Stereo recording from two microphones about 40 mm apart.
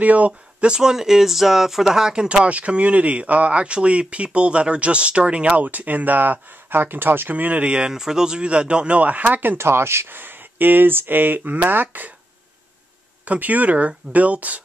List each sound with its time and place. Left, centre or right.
0.0 s speech: right
0.7 s speech: centre
2.4 s speech: right
5.6 s speech: right
7.9 s speech: centre; by 9.6 s right
9.6 s speech: right
13.2 s speech: right